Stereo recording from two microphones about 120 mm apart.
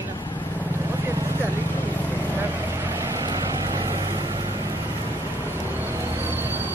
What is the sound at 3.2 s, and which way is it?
Vehicle, 35° right (ahead or behind).